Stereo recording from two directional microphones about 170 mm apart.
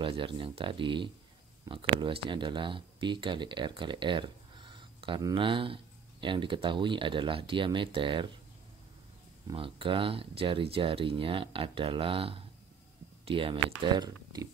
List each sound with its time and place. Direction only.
0.0 s speech: 30° right (ahead or behind)
9.5 s speech: 30° right (ahead or behind)